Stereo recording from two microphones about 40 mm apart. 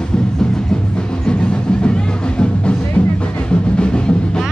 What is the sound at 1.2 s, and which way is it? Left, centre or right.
Music, left.